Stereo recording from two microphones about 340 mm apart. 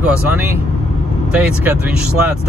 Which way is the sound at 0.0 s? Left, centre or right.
Centre.